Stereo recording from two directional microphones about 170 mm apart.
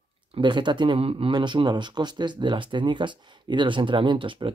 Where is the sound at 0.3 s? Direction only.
25° right (ahead or behind).